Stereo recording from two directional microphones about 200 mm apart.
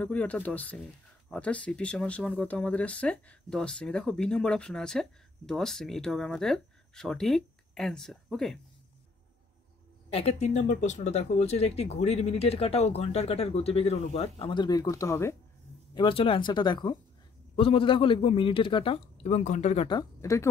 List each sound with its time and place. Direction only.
0.0 s speech: 5° left (ahead or behind)
10.1 s speech: 30° left (ahead or behind); by 15.3 s 15° left (ahead or behind)
15.9 s a man's voice: 25° left (ahead or behind)